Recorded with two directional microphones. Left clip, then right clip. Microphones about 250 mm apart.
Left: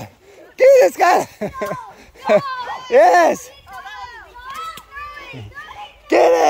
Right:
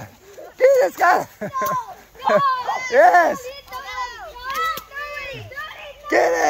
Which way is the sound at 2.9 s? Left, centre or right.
Left.